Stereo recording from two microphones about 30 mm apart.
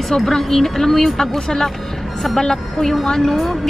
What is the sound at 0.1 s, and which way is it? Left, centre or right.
A woman's voice, centre.